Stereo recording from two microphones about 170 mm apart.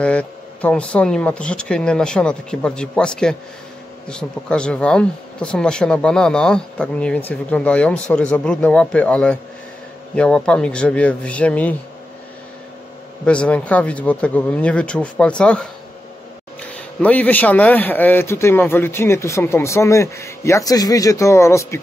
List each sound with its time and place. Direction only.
0.0 s a man's voice: 10° left (ahead or behind)
13.2 s a man's voice: 5° left (ahead or behind)
16.7 s a man's voice: 10° left (ahead or behind)